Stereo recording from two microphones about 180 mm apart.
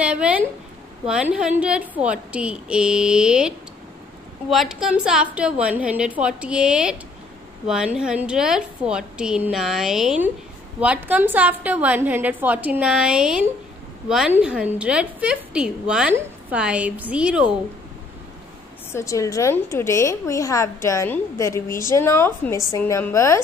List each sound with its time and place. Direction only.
0.0 s a sound: 5° right (ahead or behind)
1.0 s a woman's voice: 5° right (ahead or behind)
18.9 s a woman's voice: 15° left (ahead or behind)